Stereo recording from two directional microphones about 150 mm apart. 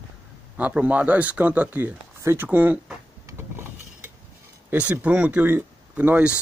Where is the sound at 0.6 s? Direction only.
10° right (ahead or behind).